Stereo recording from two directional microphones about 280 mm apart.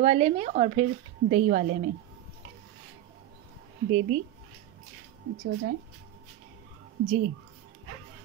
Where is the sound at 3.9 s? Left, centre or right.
Right.